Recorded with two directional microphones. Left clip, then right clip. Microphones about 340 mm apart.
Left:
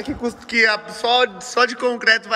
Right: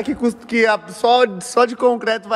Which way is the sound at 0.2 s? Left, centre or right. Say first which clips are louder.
Left 1 dB; centre.